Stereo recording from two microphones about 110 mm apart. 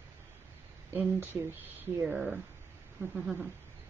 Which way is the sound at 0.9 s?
20° right (ahead or behind).